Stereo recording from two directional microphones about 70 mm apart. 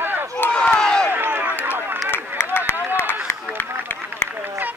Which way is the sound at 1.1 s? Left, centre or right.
Right.